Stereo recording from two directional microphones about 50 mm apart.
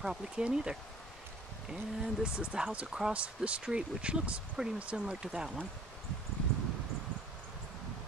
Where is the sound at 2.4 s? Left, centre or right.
Right.